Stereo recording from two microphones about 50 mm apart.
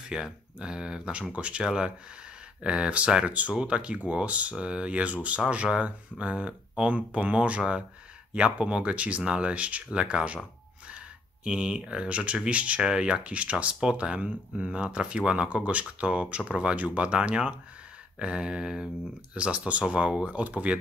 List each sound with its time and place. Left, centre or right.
0.1 s speech: centre
11.4 s speech: centre
13.2 s speech: right